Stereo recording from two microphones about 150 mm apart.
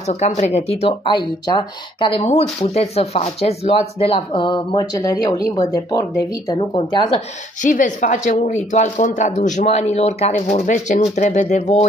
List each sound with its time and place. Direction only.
0.1 s speech: 45° left (ahead or behind); by 7.2 s 30° left (ahead or behind)
7.6 s speech: 55° left (ahead or behind)